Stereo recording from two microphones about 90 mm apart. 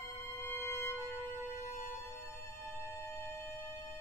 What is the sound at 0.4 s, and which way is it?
Music, 25° left (ahead or behind).